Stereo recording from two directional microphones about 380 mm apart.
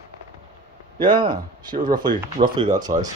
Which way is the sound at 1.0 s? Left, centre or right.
Centre.